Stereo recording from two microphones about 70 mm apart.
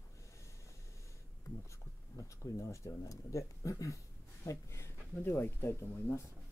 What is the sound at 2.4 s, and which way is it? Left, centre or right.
Speech, left.